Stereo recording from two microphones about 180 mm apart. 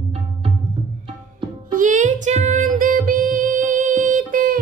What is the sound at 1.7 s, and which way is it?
Music, 45° right (ahead or behind).